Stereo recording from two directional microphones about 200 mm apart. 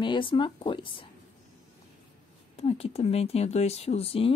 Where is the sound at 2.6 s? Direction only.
30° left (ahead or behind).